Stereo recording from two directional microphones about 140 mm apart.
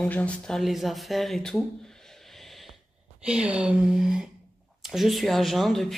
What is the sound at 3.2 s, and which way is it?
Speech, 5° right (ahead or behind).